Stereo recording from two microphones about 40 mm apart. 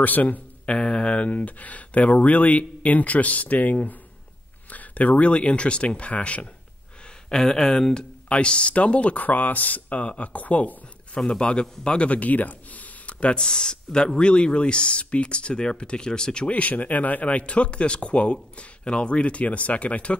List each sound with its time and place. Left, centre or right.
0.0 s a man's voice: left
0.7 s speech: left
7.2 s speech: centre; by 9.2 s left
9.2 s speech: left
11.1 s speech: left
13.4 s speech: centre
16.4 s speech: left